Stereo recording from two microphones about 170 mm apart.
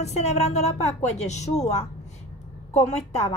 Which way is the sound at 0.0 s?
40° left (ahead or behind).